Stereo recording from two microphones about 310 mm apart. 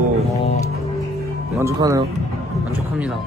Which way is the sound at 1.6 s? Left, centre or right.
Centre.